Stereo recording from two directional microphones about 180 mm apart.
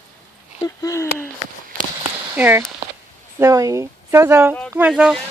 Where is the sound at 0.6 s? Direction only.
15° left (ahead or behind).